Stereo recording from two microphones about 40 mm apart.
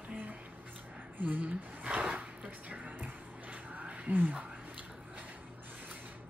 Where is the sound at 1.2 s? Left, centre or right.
Right.